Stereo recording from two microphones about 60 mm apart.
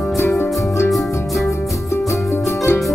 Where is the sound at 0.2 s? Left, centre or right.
Left.